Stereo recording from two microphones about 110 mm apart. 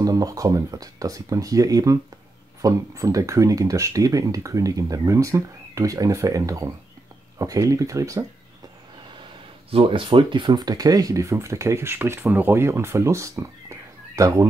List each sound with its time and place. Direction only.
0.0 s speech: 35° right (ahead or behind)
9.7 s speech: 55° right (ahead or behind); by 14.5 s 30° right (ahead or behind)